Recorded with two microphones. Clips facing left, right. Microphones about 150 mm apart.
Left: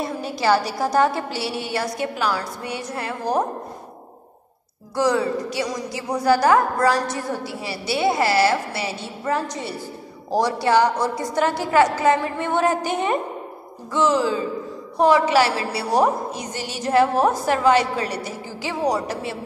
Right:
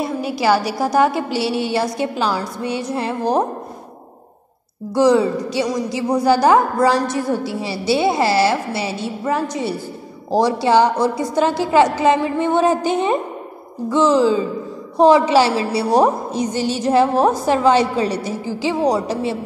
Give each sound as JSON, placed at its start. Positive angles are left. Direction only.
{"t": 0.0, "sound": "a woman's voice", "side_deg": -5}
{"t": 1.3, "sound": "a woman's voice", "side_deg": -25}
{"t": 4.9, "sound": "a woman's voice", "side_deg": -20}
{"t": 9.2, "sound": "a woman's voice", "side_deg": -10}
{"t": 10.3, "sound": "a woman's voice", "side_deg": -25}